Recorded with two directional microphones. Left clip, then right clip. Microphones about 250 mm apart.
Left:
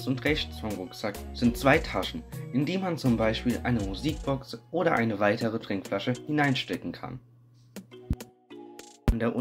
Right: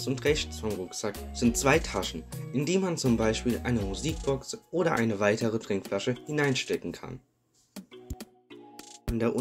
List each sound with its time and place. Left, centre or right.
0.0 s speech: right